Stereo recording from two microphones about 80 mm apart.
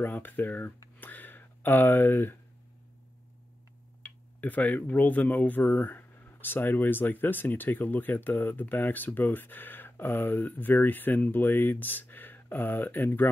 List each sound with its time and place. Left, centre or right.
0.0 s speech: left
0.9 s a sound: left
4.4 s speech: left